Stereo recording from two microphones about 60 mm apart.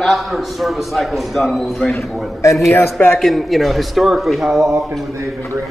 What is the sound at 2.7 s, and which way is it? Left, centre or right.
Speech, left.